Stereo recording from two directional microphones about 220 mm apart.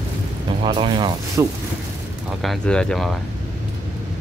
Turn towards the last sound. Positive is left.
turn(degrees=0)  # may be behind; listen again after turning